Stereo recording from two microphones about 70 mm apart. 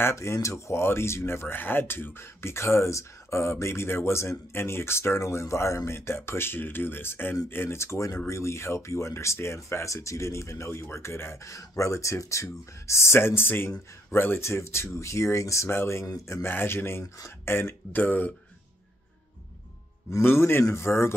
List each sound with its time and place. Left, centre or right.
0.0 s speech: left
20.1 s speech: left